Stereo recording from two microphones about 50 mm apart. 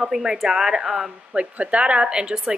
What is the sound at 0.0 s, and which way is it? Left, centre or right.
A woman's voice, centre.